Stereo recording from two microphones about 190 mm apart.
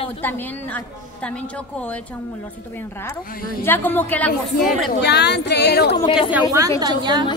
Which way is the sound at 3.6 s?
10° left (ahead or behind).